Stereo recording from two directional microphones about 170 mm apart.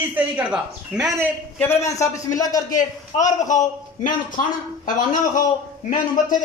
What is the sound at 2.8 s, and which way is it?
A man's voice, 45° left (ahead or behind).